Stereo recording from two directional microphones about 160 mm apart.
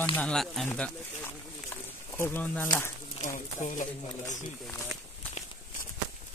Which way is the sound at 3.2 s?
55° left (ahead or behind).